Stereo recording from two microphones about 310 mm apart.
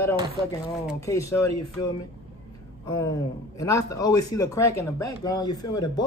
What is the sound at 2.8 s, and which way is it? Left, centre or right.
Speech, centre.